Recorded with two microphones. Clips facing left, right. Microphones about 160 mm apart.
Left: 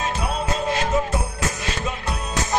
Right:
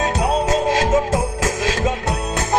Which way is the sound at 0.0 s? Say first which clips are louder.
Right 7 dB; 85° right.